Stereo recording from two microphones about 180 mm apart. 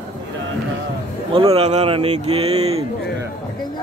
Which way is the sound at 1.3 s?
30° right (ahead or behind).